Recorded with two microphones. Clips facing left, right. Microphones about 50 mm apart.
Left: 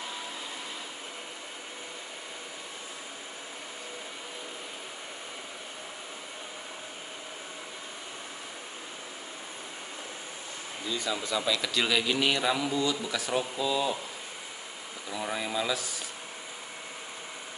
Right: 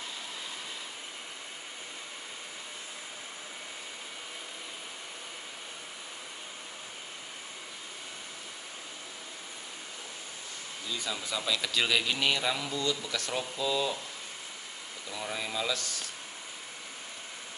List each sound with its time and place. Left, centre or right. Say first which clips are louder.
10.9 s a man's voice: left 4 dB; centre
15.0 s speech: left 3 dB; centre